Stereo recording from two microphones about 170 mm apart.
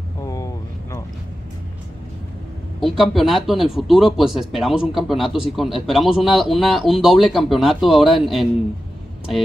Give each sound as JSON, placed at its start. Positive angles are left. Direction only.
{"t": 0.2, "sound": "vehicle", "side_deg": 20}
{"t": 2.8, "sound": "speech", "side_deg": 0}